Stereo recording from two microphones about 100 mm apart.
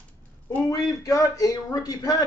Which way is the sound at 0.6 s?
35° left (ahead or behind).